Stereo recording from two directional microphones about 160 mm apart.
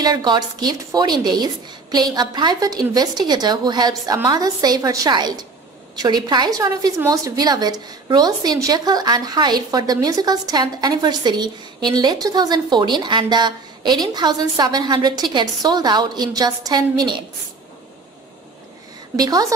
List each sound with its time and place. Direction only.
0.0 s a woman's voice: 25° right (ahead or behind)
19.1 s a woman's voice: 25° right (ahead or behind)